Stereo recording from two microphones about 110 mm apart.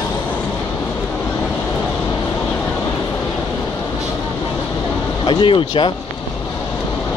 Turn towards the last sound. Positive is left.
turn(degrees=50)  # may be behind; listen again after turning